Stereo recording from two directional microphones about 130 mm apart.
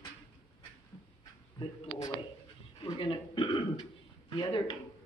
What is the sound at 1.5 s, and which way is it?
Speech, 25° left (ahead or behind).